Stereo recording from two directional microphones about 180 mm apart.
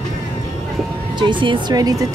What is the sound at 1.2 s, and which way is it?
Speech, 25° right (ahead or behind).